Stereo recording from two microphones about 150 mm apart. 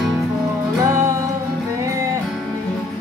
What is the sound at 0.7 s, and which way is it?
Music, 20° right (ahead or behind).